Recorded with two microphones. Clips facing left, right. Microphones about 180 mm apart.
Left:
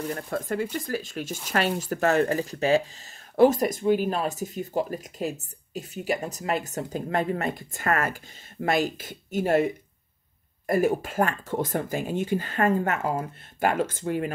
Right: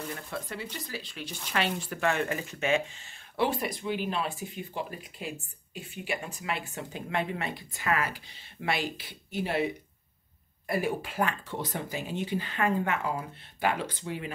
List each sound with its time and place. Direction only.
0.1 s speech: 45° left (ahead or behind)
10.7 s speech: 45° left (ahead or behind)